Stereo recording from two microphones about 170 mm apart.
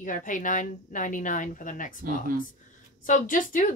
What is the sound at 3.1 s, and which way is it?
Speech, 50° left (ahead or behind).